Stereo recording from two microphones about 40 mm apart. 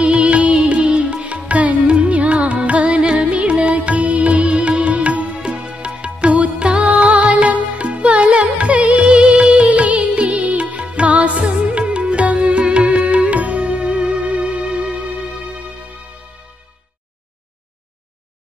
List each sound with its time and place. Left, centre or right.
0.0 s music: right